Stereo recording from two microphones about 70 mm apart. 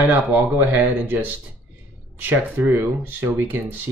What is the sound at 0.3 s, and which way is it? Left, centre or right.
Speech, right.